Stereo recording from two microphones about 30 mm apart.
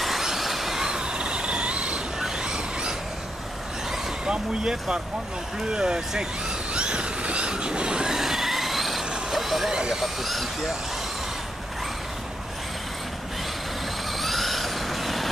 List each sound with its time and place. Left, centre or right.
0.0 s train: centre
0.8 s vehicle: right
2.3 s a sound: right
4.3 s speech: right
6.7 s vehicle: right
8.2 s train: centre
9.3 s vehicle: centre
9.7 s speech: right
10.0 s speech: centre
14.1 s vehicle: centre